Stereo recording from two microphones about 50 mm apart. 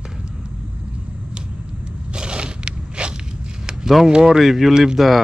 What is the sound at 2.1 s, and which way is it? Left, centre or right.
Scrape, centre.